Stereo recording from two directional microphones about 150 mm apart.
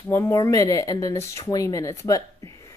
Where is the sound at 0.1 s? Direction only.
20° left (ahead or behind).